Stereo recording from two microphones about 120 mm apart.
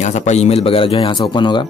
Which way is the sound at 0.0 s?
75° left (ahead or behind).